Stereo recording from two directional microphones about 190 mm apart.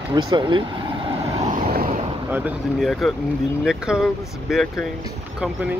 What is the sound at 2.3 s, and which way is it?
Speech, 10° right (ahead or behind).